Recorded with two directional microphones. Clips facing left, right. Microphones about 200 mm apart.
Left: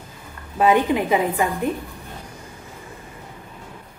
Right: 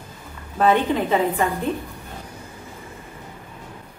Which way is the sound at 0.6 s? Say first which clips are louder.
Left 1 dB; 10° left (ahead or behind).